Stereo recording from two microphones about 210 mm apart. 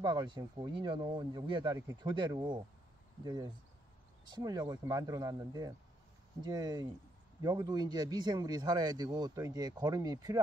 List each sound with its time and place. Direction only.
0.0 s speech: 20° right (ahead or behind)